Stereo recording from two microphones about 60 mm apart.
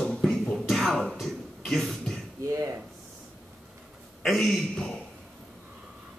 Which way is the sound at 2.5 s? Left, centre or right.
Right.